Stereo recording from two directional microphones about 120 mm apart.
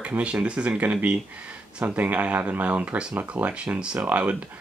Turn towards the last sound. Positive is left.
turn(degrees=-10)  # may be behind; listen again after turning